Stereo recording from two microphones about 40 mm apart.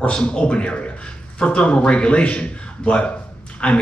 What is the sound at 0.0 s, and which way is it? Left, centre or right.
A man's voice, left.